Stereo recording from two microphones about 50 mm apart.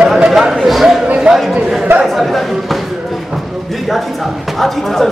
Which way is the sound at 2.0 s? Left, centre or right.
Centre.